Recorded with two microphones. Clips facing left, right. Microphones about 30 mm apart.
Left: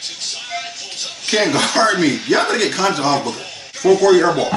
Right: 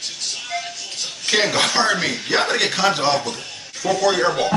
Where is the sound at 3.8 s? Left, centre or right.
Centre.